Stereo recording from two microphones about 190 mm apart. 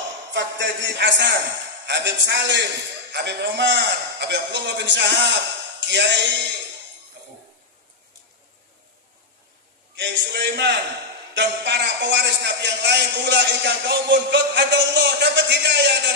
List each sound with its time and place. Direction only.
0.3 s a man's voice: 70° right (ahead or behind)
9.9 s a man's voice: 65° right (ahead or behind)